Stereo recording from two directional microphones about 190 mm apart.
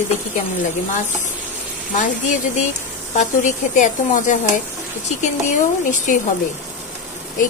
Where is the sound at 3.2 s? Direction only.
40° left (ahead or behind).